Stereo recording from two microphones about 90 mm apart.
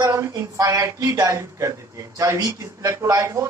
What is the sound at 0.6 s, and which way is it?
Speech, 40° right (ahead or behind).